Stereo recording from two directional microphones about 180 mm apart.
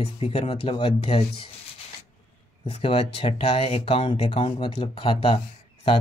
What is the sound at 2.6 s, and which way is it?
Speech, 30° left (ahead or behind).